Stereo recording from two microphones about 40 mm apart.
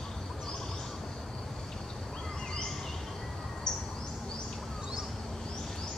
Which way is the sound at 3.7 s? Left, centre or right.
Centre.